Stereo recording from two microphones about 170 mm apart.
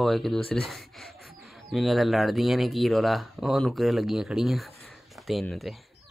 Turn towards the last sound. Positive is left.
turn(degrees=0)  # may be behind; listen again after turning